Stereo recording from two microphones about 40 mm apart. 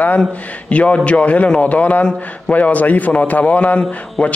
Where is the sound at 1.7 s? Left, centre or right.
Left.